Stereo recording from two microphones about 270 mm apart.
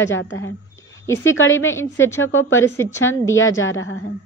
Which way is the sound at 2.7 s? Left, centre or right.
Centre.